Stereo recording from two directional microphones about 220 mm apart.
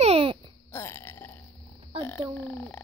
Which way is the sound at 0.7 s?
10° left (ahead or behind).